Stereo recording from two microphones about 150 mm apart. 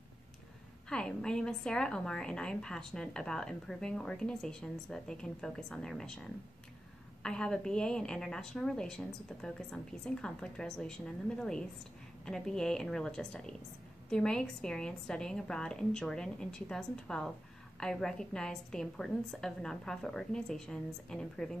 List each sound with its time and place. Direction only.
0.8 s a woman's voice: 5° left (ahead or behind)